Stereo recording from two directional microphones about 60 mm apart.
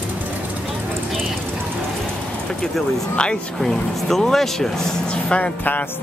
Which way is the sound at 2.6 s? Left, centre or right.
Centre.